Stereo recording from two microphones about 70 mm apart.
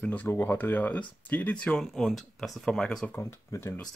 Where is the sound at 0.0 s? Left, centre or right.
Left.